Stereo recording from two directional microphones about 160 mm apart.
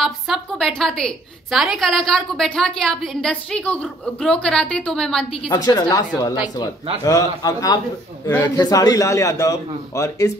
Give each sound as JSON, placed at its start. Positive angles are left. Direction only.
{"t": 0.0, "sound": "a woman's voice", "side_deg": 0}
{"t": 5.5, "sound": "a man's voice", "side_deg": 25}